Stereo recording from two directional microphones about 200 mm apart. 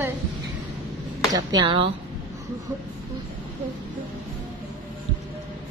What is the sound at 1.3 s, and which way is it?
Speech, 20° right (ahead or behind).